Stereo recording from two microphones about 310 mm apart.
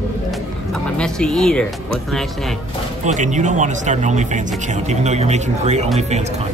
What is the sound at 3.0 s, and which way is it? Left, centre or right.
Speech, right.